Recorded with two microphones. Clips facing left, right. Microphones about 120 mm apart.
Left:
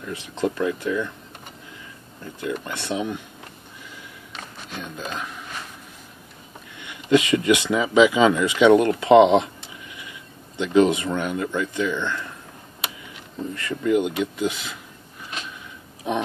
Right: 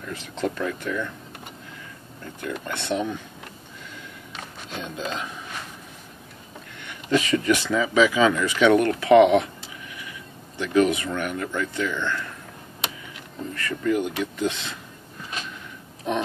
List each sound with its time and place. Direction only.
0.0 s speech: 15° left (ahead or behind)
2.4 s speech: 10° left (ahead or behind)
4.8 s speech: 5° left (ahead or behind)
6.8 s speech: 15° left (ahead or behind)
10.6 s speech: 25° left (ahead or behind)
13.6 s speech: 20° left (ahead or behind)